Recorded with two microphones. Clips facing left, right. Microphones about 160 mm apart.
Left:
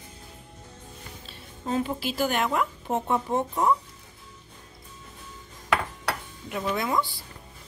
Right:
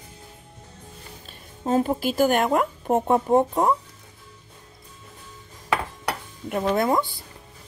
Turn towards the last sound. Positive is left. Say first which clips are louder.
# right 5 dB
turn(degrees=-50)  # may be behind; listen again after turning